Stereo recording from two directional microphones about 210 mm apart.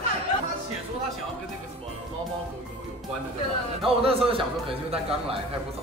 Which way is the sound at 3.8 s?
25° right (ahead or behind).